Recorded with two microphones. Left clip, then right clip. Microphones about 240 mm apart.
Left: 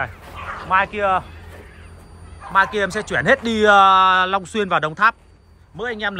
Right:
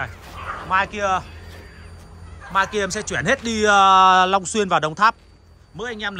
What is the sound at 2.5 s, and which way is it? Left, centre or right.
Speech, centre.